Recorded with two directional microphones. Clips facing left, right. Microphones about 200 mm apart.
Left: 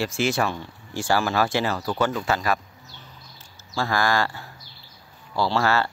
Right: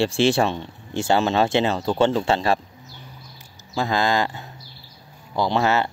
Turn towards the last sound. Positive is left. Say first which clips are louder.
# right 2 dB
turn(degrees=-20)  # may be behind; listen again after turning